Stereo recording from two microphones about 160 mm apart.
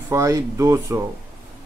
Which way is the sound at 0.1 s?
20° right (ahead or behind).